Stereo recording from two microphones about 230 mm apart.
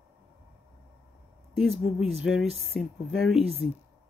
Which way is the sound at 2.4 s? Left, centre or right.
Right.